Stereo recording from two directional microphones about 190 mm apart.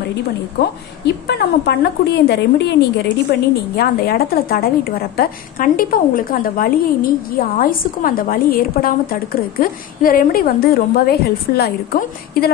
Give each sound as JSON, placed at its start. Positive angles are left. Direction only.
{"t": 0.6, "sound": "a woman's voice", "side_deg": 60}